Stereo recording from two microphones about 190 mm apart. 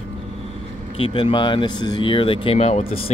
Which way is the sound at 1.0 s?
30° left (ahead or behind).